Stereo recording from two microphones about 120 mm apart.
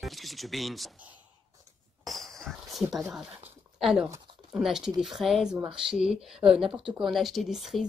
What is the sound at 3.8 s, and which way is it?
Speech, 5° right (ahead or behind).